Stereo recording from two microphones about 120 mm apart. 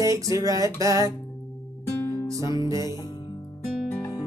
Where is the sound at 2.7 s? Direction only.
30° right (ahead or behind).